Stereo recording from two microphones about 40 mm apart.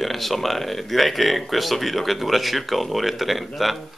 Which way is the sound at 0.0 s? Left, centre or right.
Centre.